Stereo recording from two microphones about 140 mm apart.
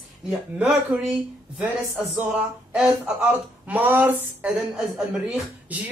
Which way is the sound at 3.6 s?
15° right (ahead or behind).